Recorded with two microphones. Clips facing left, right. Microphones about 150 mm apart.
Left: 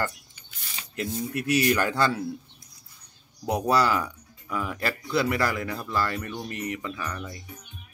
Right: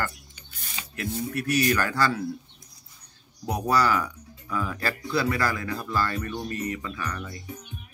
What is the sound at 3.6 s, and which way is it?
Speech, 25° left (ahead or behind).